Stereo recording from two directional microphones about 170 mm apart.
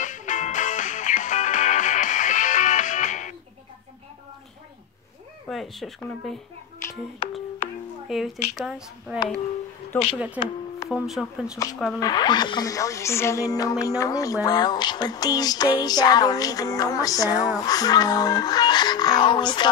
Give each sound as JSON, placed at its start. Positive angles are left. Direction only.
{"t": 0.0, "sound": "music", "side_deg": 45}
{"t": 5.5, "sound": "speech", "side_deg": 0}
{"t": 6.8, "sound": "speech", "side_deg": 15}
{"t": 7.6, "sound": "music", "side_deg": 20}
{"t": 8.1, "sound": "speech", "side_deg": 0}
{"t": 12.0, "sound": "music", "side_deg": 25}